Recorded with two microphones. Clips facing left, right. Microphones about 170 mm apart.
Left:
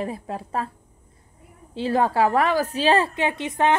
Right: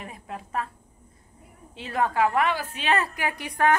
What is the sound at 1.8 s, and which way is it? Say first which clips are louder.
A woman's voice: left 4 dB; 30° left (ahead or behind).